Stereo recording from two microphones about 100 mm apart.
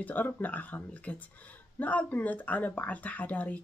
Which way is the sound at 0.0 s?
15° left (ahead or behind).